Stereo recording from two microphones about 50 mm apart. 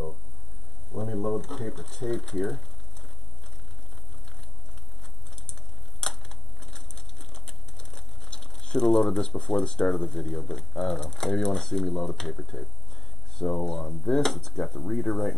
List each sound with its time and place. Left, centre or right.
0.9 s a sound: centre
1.8 s speech: centre
5.5 s a sound: centre
9.4 s speech: centre
10.1 s speech: centre
13.7 s speech: centre